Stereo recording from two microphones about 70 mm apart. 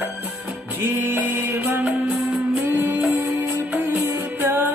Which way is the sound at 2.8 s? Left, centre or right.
Right.